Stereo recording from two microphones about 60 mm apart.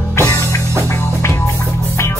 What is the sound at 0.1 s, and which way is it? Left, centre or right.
Music, left.